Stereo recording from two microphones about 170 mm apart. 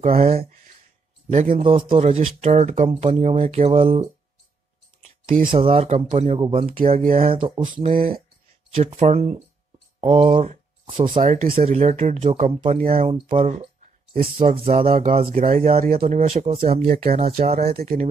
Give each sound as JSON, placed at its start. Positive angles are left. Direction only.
{"t": 1.3, "sound": "speech", "side_deg": -45}
{"t": 1.6, "sound": "speech", "side_deg": -30}
{"t": 5.5, "sound": "speech", "side_deg": -30}
{"t": 7.1, "sound": "speech", "side_deg": -55}
{"t": 7.3, "sound": "speech", "side_deg": -30}
{"t": 11.2, "sound": "speech", "side_deg": -55}
{"t": 11.6, "sound": "speech", "side_deg": -40}
{"t": 15.0, "sound": "speech", "side_deg": -45}